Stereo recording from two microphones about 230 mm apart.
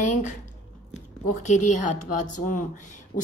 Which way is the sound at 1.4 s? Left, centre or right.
Left.